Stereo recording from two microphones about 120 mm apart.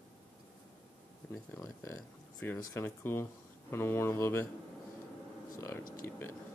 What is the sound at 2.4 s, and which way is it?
Speech, 20° left (ahead or behind).